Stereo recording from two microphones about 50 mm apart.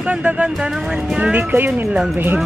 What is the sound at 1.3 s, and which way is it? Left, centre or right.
Speech, right.